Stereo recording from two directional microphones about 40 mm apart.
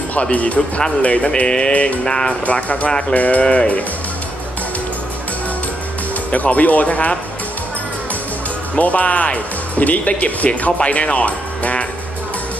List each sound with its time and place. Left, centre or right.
0.1 s speech: left
1.3 s a sound: left
1.7 s speech: left
2.0 s a sound: centre
2.4 s speech: left
6.3 s speech: left
8.7 s speech: left